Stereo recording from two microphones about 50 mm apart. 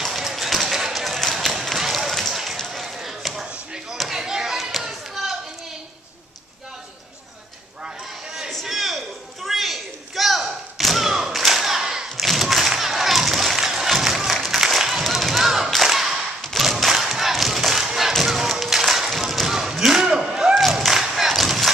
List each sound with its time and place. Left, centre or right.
0.0 s a sound: centre
1.5 s run: centre
2.7 s basketball bounce: centre
3.4 s chop: centre
4.0 s a sound: centre
4.6 s children playing: centre
8.6 s a sound: centre
15.7 s whip: centre
16.5 s thump: centre
18.2 s a sound: centre
20.5 s music: centre
21.4 s battle cry: centre